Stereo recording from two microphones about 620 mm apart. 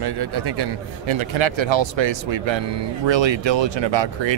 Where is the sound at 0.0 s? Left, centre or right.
Right.